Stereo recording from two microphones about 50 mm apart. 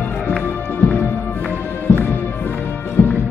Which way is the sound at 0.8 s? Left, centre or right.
Left.